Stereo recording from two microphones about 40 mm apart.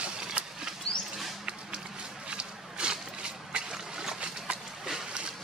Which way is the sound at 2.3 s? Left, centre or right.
Right.